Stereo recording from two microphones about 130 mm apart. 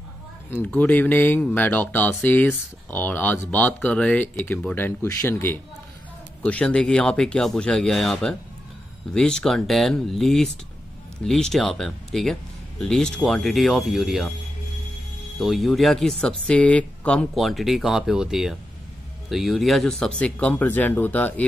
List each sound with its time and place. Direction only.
0.6 s speech: 10° left (ahead or behind)
15.3 s speech: centre (ahead or behind)